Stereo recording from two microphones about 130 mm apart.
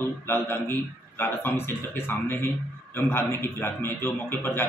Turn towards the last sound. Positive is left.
turn(degrees=15)  # may be behind; listen again after turning